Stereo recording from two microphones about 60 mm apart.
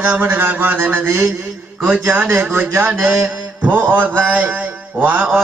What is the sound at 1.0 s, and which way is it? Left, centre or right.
Speech, right.